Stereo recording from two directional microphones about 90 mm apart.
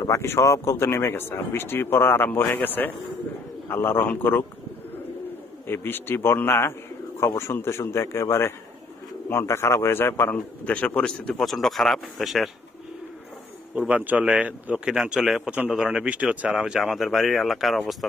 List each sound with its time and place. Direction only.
0.0 s speech: 35° left (ahead or behind)
5.7 s a man's voice: 25° left (ahead or behind)
10.3 s a man's voice: 15° left (ahead or behind); by 12.4 s centre (ahead or behind)
13.7 s a man's voice: 15° right (ahead or behind)